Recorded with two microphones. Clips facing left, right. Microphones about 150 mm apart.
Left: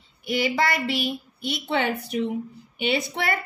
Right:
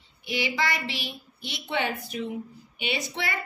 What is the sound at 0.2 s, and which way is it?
A woman's voice, 50° left (ahead or behind).